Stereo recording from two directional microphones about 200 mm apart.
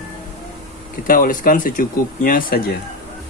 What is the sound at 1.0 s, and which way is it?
Speech, 45° left (ahead or behind).